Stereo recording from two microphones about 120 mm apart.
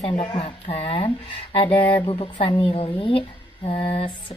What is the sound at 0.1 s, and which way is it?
Speech, 35° left (ahead or behind).